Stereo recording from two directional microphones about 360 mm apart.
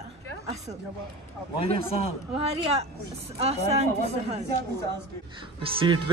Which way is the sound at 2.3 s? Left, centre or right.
Centre.